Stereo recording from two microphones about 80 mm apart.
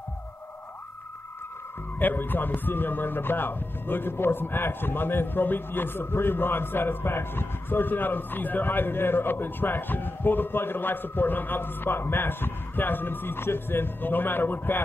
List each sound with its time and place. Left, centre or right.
2.0 s a man's voice: left